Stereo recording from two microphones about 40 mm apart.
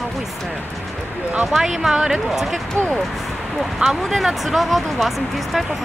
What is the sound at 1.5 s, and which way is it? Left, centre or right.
Speech, centre.